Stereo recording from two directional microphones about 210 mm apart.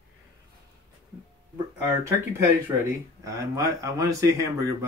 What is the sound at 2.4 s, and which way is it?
Speech, 15° right (ahead or behind).